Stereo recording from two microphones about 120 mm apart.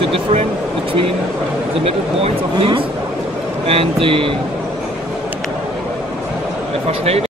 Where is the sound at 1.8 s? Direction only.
55° right (ahead or behind).